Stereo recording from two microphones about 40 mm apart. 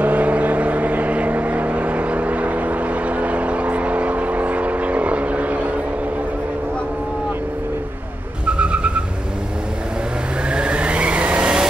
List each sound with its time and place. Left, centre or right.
0.0 s vehicle: right
8.5 s vehicle: right
10.5 s vehicle: right